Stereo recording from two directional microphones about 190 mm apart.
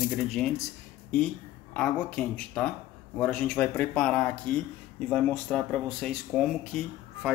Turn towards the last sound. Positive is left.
turn(degrees=0)  # may be behind; listen again after turning